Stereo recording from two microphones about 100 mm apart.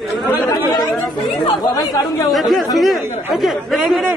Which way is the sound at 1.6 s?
35° left (ahead or behind).